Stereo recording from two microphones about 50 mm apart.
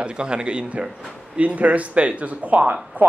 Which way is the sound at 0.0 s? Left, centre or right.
Centre.